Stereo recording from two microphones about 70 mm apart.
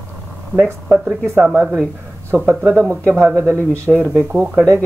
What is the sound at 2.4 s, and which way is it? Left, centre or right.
Speech, right.